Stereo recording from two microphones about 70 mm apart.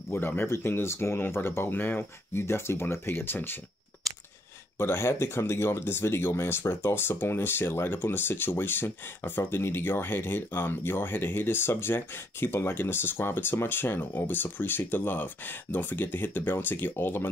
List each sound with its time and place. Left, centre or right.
0.1 s speech: left
2.4 s speech: left
4.1 s a sound: centre
4.7 s speech: left